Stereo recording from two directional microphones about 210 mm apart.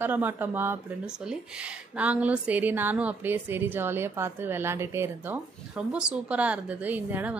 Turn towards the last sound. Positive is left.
turn(degrees=-10)  # may be behind; listen again after turning